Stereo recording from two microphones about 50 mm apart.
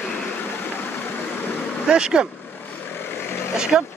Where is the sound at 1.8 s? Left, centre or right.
Centre.